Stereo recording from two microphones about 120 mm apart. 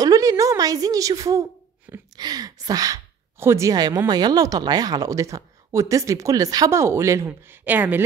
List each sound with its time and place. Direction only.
0.0 s speech: 30° right (ahead or behind)